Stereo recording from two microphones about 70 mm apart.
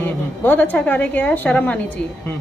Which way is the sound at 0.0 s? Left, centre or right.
Left.